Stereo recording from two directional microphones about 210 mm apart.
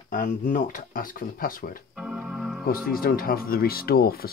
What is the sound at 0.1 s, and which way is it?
Speech, 40° left (ahead or behind).